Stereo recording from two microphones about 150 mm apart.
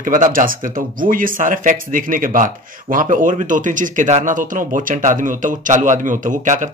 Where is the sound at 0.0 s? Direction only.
65° right (ahead or behind).